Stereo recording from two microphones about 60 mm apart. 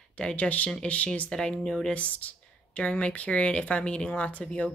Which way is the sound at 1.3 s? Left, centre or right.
Centre.